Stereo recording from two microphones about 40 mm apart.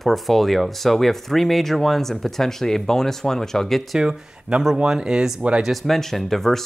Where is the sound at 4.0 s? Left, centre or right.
Right.